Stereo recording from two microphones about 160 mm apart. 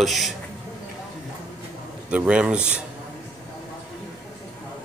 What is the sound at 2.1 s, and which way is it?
Speech, 5° right (ahead or behind).